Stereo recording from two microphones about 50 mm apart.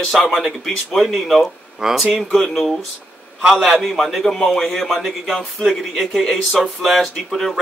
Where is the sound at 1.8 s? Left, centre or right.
Centre.